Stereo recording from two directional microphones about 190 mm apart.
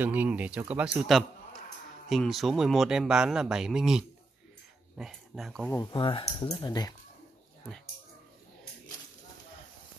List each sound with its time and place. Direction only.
0.0 s a man's voice: 10° right (ahead or behind)
5.7 s speech: 20° left (ahead or behind)